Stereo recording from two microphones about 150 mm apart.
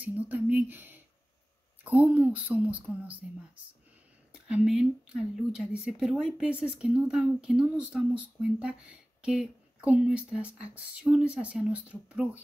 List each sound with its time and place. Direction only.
0.0 s speech: 10° right (ahead or behind)
4.3 s speech: 5° right (ahead or behind)